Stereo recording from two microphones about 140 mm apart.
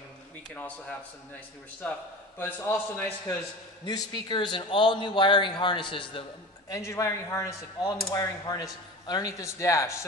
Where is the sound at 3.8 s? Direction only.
30° left (ahead or behind).